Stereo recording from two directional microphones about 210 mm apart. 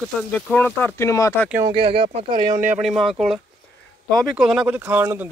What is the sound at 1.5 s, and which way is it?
Speech, 15° right (ahead or behind).